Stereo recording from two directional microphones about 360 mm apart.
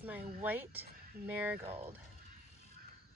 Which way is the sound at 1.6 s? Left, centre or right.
Centre.